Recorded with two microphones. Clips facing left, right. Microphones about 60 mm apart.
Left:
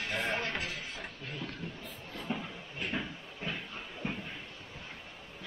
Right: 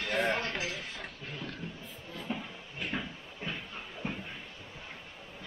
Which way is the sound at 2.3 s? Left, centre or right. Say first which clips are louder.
Left 1 dB; centre.